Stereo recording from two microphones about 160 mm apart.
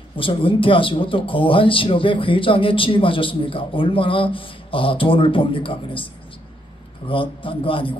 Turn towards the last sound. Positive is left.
turn(degrees=35)  # may be behind; listen again after turning